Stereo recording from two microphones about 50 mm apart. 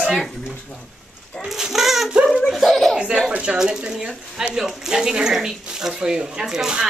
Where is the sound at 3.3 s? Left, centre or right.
Centre.